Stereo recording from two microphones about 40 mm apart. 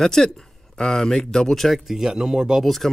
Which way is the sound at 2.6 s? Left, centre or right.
Centre.